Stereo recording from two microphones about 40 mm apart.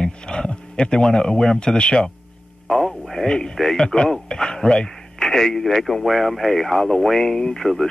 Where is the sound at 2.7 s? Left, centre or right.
Centre.